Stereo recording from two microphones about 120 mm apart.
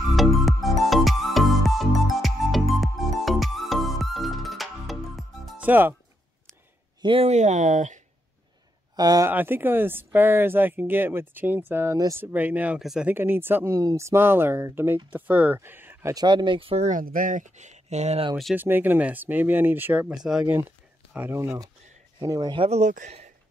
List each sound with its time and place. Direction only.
0.1 s music: centre (ahead or behind)
5.6 s speech: 15° right (ahead or behind)
7.0 s speech: 45° right (ahead or behind)
7.2 s speech: 75° right (ahead or behind)
8.9 s speech: 30° right (ahead or behind)
9.3 s speech: 15° right (ahead or behind)
13.1 s speech: 20° right (ahead or behind)
16.3 s speech: 40° right (ahead or behind)
16.8 s speech: 90° right; by 18.2 s 65° right (ahead or behind)
18.6 s speech: 15° right (ahead or behind)
21.1 s speech: 15° right (ahead or behind)
22.2 s speech: 35° right (ahead or behind)
22.7 s speech: 80° right